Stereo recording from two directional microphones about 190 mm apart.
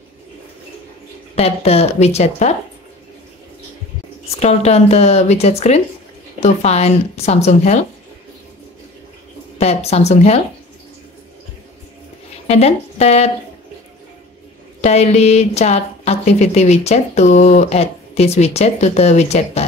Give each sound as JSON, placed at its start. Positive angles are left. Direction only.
{"t": 1.3, "sound": "a woman's voice", "side_deg": 35}
{"t": 4.4, "sound": "a woman's voice", "side_deg": 35}
{"t": 9.6, "sound": "a woman's voice", "side_deg": 35}
{"t": 12.4, "sound": "speech", "side_deg": 35}
{"t": 14.8, "sound": "a woman's voice", "side_deg": 35}